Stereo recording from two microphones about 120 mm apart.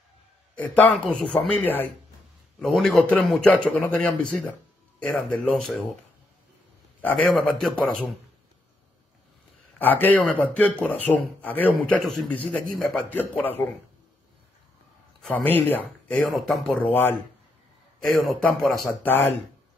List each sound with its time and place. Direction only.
0.6 s speech: 10° left (ahead or behind)
2.6 s speech: centre (ahead or behind)
7.2 s speech: 5° left (ahead or behind)
9.8 s speech: 15° left (ahead or behind)
13.1 s speech: 15° left (ahead or behind)
15.2 s speech: 15° left (ahead or behind)
16.2 s speech: centre (ahead or behind)
18.0 s speech: centre (ahead or behind)
19.0 s speech: 15° left (ahead or behind)